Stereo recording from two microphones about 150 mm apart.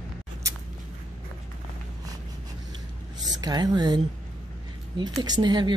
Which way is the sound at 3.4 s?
25° right (ahead or behind).